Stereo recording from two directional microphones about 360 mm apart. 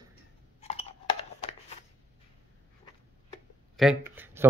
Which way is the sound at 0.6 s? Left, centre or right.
Centre.